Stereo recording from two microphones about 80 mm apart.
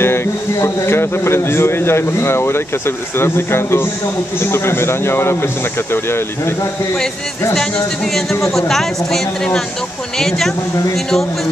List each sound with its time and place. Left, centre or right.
0.0 s a man's voice: left
7.7 s speech: centre